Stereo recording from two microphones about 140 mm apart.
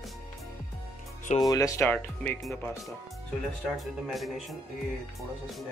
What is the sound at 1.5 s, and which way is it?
Speech, 25° left (ahead or behind).